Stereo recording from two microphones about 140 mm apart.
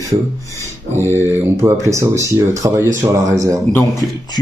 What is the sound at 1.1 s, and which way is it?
Speech, 15° right (ahead or behind).